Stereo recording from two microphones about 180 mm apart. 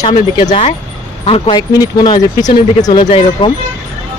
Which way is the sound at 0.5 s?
35° left (ahead or behind).